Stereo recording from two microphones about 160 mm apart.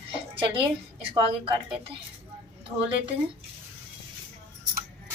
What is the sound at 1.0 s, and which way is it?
Speech, 35° right (ahead or behind).